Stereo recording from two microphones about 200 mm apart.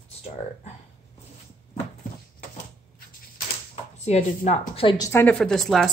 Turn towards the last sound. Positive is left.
turn(degrees=0)  # may be behind; listen again after turning